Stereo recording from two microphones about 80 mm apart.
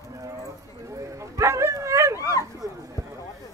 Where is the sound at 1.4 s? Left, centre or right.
Right.